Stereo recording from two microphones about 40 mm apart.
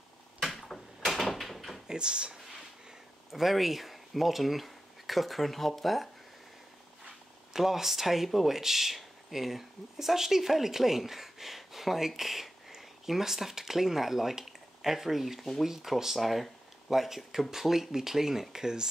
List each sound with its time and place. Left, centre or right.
0.4 s a sound: centre
0.7 s door: centre
1.9 s speech: right
3.3 s speech: centre
7.5 s speech: centre